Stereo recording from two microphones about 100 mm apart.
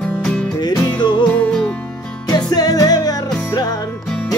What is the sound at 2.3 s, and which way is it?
Music, 40° left (ahead or behind).